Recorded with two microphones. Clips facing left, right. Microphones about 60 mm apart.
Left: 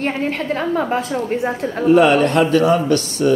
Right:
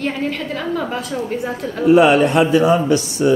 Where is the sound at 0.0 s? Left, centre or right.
Left.